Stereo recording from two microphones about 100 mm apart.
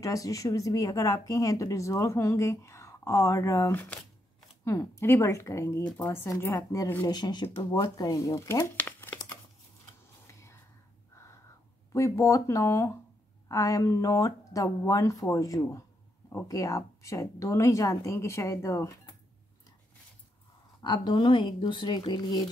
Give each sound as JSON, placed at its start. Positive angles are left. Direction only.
{"t": 0.0, "sound": "speech", "side_deg": 35}
{"t": 7.1, "sound": "speech", "side_deg": 45}
{"t": 8.7, "sound": "crumpling", "side_deg": 20}
{"t": 10.2, "sound": "a sound", "side_deg": 30}
{"t": 11.9, "sound": "speech", "side_deg": 30}
{"t": 20.8, "sound": "speech", "side_deg": 50}